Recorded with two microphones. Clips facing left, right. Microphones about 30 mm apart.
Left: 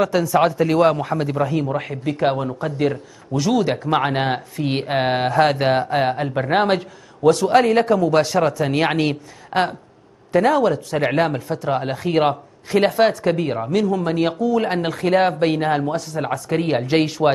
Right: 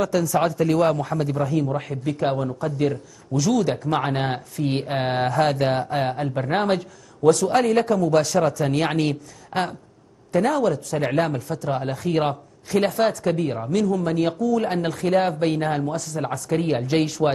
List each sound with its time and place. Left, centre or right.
0.0 s a man's voice: left